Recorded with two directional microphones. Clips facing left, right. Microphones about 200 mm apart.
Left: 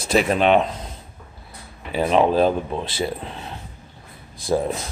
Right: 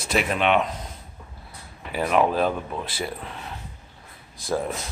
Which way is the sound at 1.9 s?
25° left (ahead or behind).